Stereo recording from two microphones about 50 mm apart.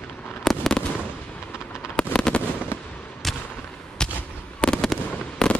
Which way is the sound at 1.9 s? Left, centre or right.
Left.